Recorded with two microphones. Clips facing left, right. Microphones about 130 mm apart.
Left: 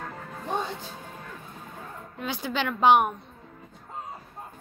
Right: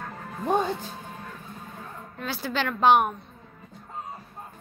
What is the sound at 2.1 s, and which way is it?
Speech, 15° left (ahead or behind).